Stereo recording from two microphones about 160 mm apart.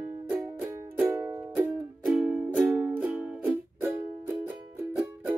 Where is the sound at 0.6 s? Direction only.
15° right (ahead or behind).